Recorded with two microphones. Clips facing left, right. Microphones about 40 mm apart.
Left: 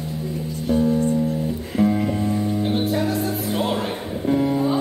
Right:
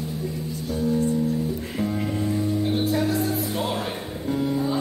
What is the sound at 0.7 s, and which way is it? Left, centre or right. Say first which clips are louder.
Music: left 4 dB; left.